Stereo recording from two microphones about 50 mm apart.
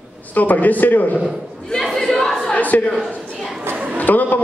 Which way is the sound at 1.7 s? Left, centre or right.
Centre.